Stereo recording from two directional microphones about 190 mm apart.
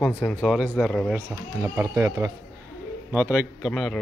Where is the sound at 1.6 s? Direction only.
15° right (ahead or behind).